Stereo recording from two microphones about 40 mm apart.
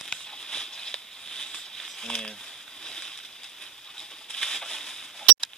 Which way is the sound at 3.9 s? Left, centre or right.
Centre.